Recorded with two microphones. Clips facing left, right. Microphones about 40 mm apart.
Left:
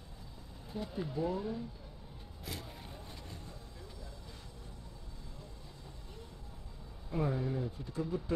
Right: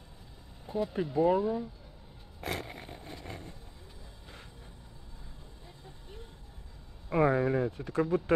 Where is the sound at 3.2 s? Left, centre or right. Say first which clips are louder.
Right 6 dB; right.